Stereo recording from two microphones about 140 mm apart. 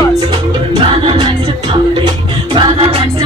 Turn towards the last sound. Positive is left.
turn(degrees=-40)  # may be behind; listen again after turning